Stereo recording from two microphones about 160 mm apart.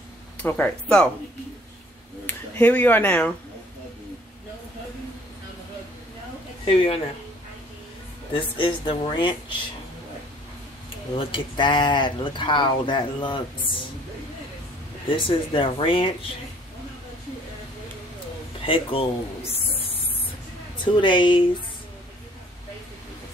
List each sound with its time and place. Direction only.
0.4 s speech: 10° left (ahead or behind)
2.2 s speech: 10° left (ahead or behind)
6.6 s speech: 35° left (ahead or behind)
8.3 s speech: 30° left (ahead or behind)
11.1 s speech: 30° left (ahead or behind)
15.0 s speech: 35° left (ahead or behind)
18.6 s speech: 35° left (ahead or behind)
19.5 s spray: 35° left (ahead or behind)
20.8 s speech: 30° left (ahead or behind)